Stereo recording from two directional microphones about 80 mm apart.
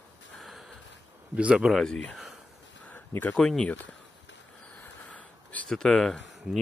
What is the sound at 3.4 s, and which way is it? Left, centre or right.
Speech, centre.